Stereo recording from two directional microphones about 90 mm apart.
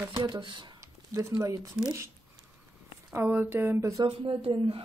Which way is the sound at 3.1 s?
25° right (ahead or behind).